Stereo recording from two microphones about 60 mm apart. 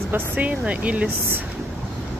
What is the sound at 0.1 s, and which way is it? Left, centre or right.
Speech, right.